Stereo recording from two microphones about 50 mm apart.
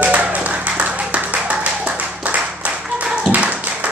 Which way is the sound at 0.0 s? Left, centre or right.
Right.